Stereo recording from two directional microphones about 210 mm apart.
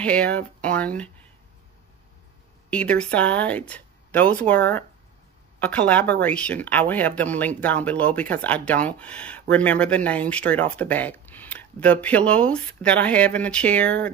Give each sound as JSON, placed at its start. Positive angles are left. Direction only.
{"t": 0.0, "sound": "speech", "side_deg": 5}
{"t": 2.7, "sound": "speech", "side_deg": 5}